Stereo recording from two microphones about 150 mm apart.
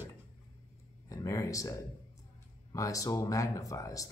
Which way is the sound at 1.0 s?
20° left (ahead or behind).